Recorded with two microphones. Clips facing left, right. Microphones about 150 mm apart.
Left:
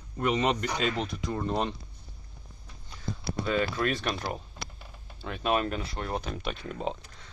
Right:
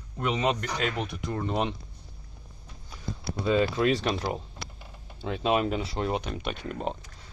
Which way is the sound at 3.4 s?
25° right (ahead or behind).